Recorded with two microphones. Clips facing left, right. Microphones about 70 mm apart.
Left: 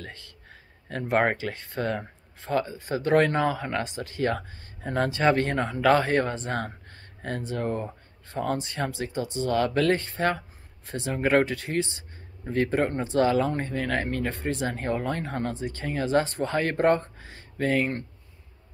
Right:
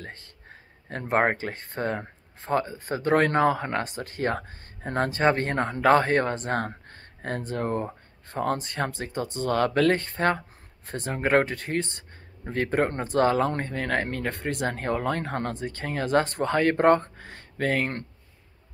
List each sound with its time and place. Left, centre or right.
0.0 s a sound: right
0.8 s speech: right
5.5 s speech: right